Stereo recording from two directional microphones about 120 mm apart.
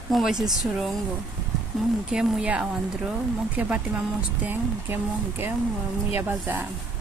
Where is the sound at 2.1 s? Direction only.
10° right (ahead or behind).